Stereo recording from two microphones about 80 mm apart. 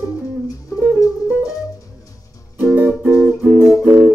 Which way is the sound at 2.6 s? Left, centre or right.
Right.